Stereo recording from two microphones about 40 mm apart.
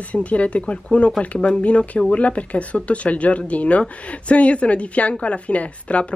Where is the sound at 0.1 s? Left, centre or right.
Left.